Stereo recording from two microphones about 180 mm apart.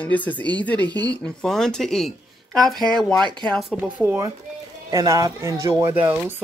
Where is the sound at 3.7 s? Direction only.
10° right (ahead or behind).